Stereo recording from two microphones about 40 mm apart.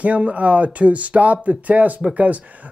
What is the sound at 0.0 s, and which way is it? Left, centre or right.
Speech, right.